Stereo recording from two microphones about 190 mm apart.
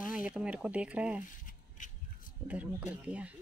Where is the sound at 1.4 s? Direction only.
45° left (ahead or behind).